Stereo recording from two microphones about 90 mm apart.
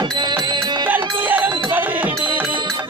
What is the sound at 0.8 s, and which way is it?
Music, 20° right (ahead or behind).